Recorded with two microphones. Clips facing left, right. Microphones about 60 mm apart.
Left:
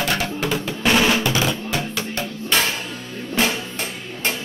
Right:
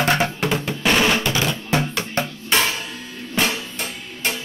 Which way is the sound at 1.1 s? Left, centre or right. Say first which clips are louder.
Left 1 dB; centre.